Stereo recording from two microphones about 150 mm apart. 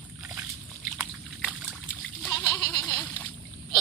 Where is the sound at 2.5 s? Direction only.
25° left (ahead or behind).